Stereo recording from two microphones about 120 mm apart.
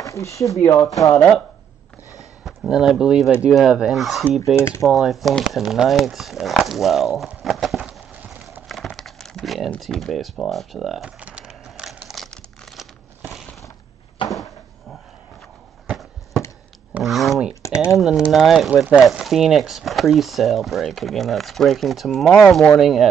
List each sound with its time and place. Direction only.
0.0 s speech: 25° left (ahead or behind)
2.4 s speech: centre (ahead or behind)
4.6 s speech: 20° left (ahead or behind)
4.8 s speech: centre (ahead or behind)
8.6 s crumpling: centre (ahead or behind)
9.8 s a sound: centre (ahead or behind)
14.3 s cupboard open or close: centre (ahead or behind)
15.9 s a sound: centre (ahead or behind)
17.5 s typing: 25° left (ahead or behind)
17.9 s speech: 5° right (ahead or behind)